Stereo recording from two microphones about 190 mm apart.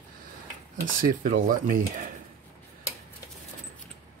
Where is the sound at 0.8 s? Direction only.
45° right (ahead or behind).